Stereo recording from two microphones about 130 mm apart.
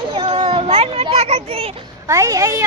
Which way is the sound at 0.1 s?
35° right (ahead or behind).